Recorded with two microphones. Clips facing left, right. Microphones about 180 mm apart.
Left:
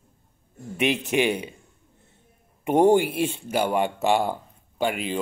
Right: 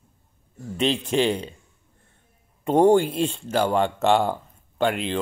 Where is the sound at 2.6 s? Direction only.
15° left (ahead or behind).